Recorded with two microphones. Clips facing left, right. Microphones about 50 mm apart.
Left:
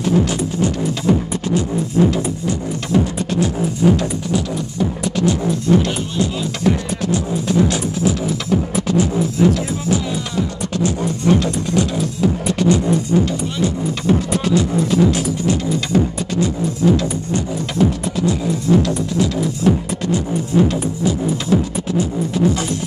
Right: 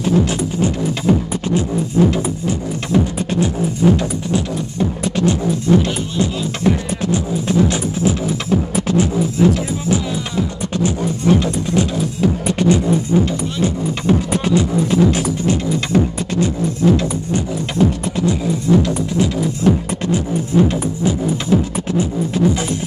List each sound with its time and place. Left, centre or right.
0.0 s music: right
3.8 s music: centre
4.7 s music: right
9.4 s music: centre